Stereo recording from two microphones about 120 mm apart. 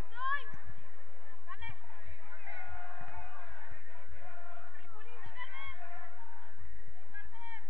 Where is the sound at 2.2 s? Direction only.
15° left (ahead or behind).